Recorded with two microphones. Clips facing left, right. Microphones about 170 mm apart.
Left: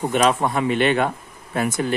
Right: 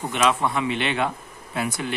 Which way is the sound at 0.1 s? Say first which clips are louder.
Left 2 dB; 45° left (ahead or behind).